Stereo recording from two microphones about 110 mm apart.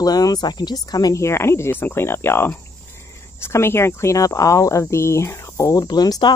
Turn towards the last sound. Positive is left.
turn(degrees=40)  # may be behind; listen again after turning